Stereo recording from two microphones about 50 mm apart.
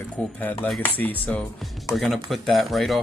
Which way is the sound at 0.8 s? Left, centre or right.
Left.